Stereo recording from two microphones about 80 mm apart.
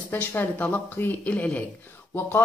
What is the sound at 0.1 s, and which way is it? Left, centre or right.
A man's voice, left.